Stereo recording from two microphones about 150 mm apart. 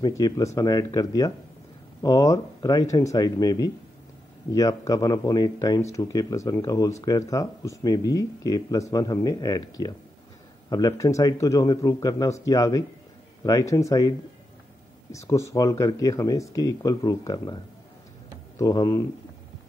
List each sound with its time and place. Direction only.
0.0 s speech: 25° left (ahead or behind)
18.6 s speech: 25° left (ahead or behind)